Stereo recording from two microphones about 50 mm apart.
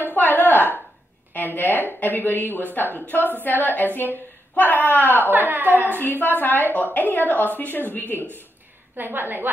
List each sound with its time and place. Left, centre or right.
0.1 s a sound: left
1.3 s a woman's voice: left
5.3 s a woman's voice: right
5.9 s a woman's voice: left
8.9 s a woman's voice: right